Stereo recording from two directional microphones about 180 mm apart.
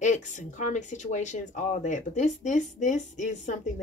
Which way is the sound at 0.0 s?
40° left (ahead or behind).